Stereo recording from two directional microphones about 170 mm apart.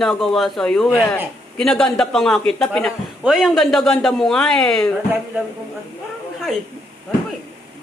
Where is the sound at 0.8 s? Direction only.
15° left (ahead or behind).